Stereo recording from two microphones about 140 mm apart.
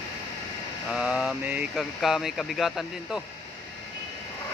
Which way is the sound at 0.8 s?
5° right (ahead or behind).